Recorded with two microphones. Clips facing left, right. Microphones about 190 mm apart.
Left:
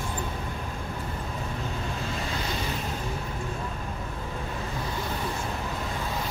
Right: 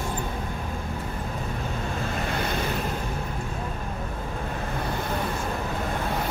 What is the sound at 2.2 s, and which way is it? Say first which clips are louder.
Waves: right 4 dB; 60° right (ahead or behind).